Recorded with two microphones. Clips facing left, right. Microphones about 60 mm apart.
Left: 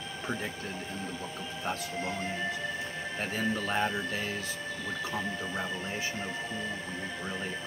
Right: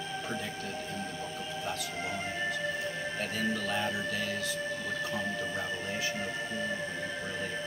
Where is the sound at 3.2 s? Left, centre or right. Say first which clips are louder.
Left 2 dB; left.